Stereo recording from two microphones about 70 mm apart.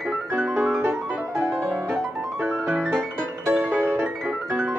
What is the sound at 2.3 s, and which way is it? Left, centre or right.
Piano, right.